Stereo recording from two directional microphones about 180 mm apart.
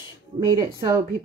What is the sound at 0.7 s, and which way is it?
Speech, 15° right (ahead or behind).